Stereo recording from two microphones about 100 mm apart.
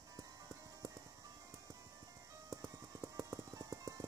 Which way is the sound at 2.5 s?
35° right (ahead or behind).